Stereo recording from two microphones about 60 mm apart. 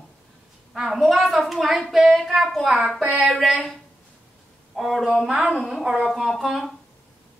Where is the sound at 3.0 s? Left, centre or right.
Right.